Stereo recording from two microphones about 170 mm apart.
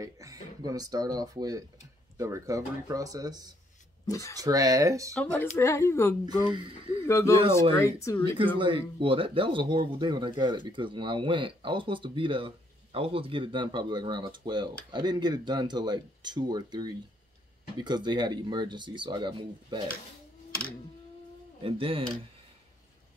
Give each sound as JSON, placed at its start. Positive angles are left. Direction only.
{"t": 0.0, "sound": "speech", "side_deg": -20}
{"t": 4.1, "sound": "speech", "side_deg": 20}
{"t": 4.4, "sound": "speech", "side_deg": -20}
{"t": 5.4, "sound": "speech", "side_deg": 15}
{"t": 6.2, "sound": "speech", "side_deg": -25}
{"t": 7.1, "sound": "speech", "side_deg": 15}
{"t": 8.5, "sound": "speech", "side_deg": -30}
{"t": 21.6, "sound": "speech", "side_deg": -30}